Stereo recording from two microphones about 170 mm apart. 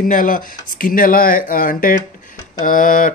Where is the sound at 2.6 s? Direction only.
50° left (ahead or behind).